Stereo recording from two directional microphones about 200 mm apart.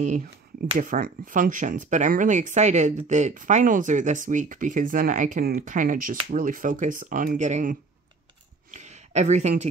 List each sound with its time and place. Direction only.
0.7 s speech: 45° right (ahead or behind)
8.7 s speech: 35° right (ahead or behind)